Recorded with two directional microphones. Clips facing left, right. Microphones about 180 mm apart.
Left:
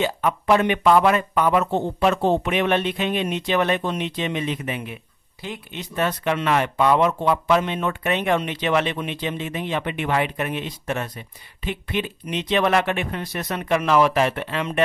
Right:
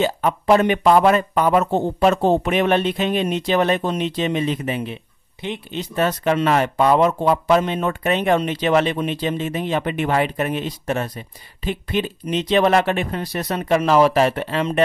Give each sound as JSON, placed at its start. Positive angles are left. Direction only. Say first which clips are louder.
{"t": 0.0, "sound": "speech", "louder": "right 3 dB", "side_deg": -35}
{"t": 5.8, "sound": "speech", "louder": "right 3 dB", "side_deg": -40}